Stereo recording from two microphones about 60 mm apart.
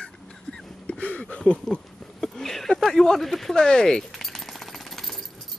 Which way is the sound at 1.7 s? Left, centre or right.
Centre.